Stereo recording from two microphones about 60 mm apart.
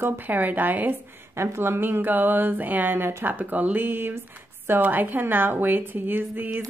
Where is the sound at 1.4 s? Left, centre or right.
Right.